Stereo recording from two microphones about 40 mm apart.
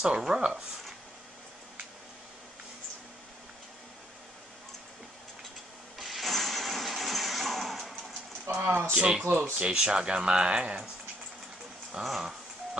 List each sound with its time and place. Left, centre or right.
0.0 s speech: centre
5.9 s a sound: centre
8.5 s speech: right
9.6 s speech: right
12.0 s dog: centre